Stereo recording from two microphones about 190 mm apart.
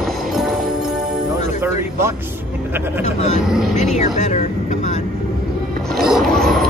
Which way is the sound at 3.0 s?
40° left (ahead or behind).